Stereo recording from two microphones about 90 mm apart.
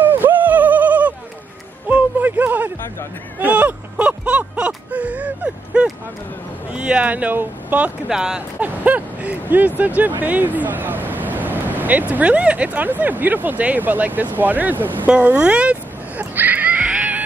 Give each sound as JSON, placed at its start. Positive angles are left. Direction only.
{"t": 0.0, "sound": "a sound", "side_deg": -20}
{"t": 6.7, "sound": "speech", "side_deg": -10}
{"t": 8.1, "sound": "speech", "side_deg": -5}
{"t": 8.5, "sound": "speech", "side_deg": -20}